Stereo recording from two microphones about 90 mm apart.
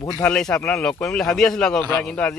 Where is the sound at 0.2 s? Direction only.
10° left (ahead or behind).